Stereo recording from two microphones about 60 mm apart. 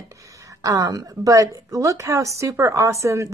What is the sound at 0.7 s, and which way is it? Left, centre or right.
Speech, right.